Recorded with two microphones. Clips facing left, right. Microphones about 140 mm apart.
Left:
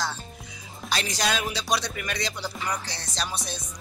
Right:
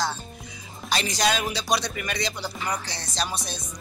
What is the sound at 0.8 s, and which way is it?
Music, centre (ahead or behind).